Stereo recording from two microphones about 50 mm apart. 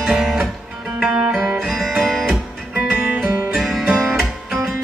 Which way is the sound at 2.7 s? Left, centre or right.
Right.